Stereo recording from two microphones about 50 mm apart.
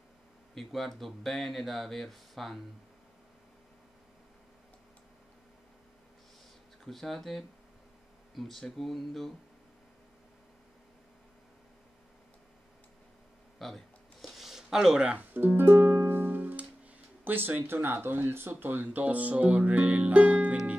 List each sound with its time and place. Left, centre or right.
0.6 s speech: centre
6.8 s speech: centre
13.6 s a sound: centre
15.3 s music: right
18.3 s speech: right